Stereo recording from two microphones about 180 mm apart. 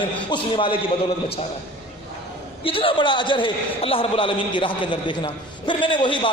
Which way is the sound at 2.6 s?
30° left (ahead or behind).